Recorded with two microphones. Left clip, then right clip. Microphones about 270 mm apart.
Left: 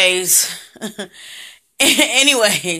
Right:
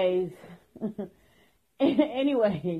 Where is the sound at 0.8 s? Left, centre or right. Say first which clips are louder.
Left 2 dB; left.